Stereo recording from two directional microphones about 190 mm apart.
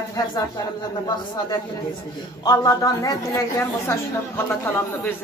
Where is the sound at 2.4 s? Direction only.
20° left (ahead or behind).